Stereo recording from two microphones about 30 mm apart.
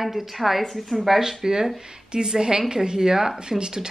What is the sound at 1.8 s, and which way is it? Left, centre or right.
Speech, right.